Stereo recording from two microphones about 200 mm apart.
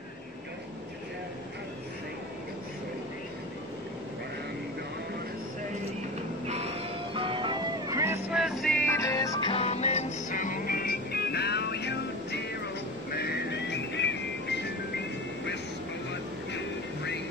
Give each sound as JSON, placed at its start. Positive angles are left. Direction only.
{"t": 6.4, "sound": "music", "side_deg": -30}
{"t": 8.3, "sound": "music", "side_deg": 0}